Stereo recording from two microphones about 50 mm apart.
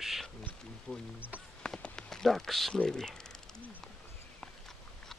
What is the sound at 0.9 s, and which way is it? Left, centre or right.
Speech, left.